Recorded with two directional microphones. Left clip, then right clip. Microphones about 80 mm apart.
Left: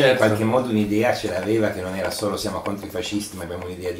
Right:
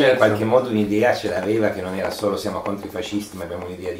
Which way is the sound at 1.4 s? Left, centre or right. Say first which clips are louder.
Right 1 dB; centre.